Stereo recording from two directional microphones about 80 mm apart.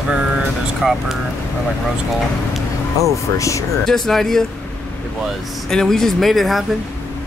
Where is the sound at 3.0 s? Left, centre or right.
Left.